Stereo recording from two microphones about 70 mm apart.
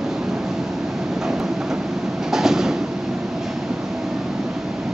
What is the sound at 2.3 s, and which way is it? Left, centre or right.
Train, centre.